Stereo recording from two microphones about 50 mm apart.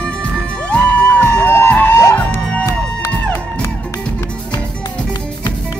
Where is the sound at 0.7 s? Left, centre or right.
Left.